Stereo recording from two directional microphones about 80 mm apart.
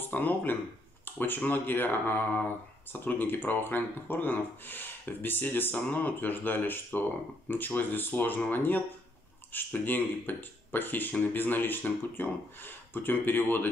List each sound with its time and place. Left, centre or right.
0.0 s speech: left